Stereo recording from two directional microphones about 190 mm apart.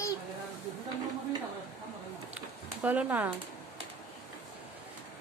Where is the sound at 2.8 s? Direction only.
10° right (ahead or behind).